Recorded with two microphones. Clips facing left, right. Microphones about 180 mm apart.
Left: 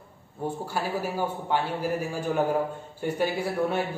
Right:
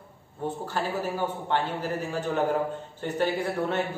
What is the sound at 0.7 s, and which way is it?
A man's voice, 10° left (ahead or behind).